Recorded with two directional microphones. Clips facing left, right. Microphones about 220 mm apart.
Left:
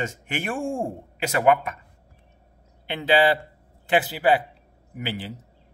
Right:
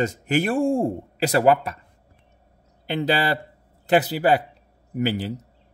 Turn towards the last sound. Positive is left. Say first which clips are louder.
# right 8 dB
turn(degrees=-40)  # may be behind; listen again after turning